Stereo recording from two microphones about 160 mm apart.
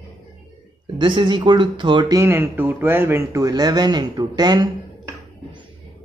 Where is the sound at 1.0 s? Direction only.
30° right (ahead or behind).